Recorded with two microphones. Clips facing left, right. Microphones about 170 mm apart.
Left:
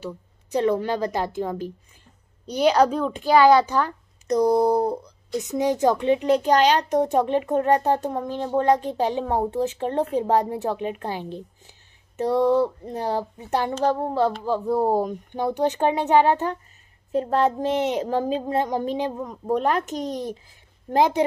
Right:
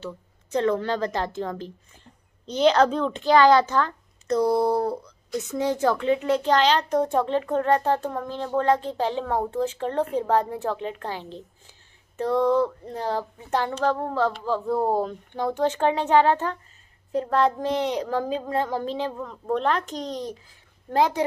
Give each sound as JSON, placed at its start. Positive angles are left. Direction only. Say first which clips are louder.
{"t": 0.0, "sound": "a child's voice", "louder": "left 2 dB", "side_deg": 15}